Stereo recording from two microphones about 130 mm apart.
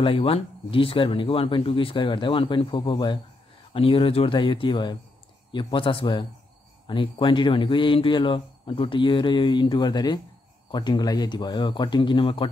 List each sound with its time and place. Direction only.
0.0 s speech: 45° left (ahead or behind)